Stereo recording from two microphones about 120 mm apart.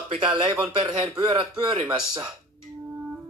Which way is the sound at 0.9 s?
35° right (ahead or behind).